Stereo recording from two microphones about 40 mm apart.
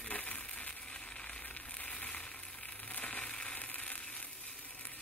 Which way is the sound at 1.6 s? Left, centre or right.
Left.